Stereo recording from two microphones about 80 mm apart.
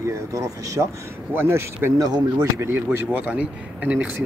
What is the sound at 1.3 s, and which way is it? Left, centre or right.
Speech, right.